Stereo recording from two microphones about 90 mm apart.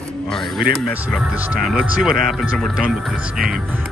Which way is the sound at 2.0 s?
Centre (ahead or behind).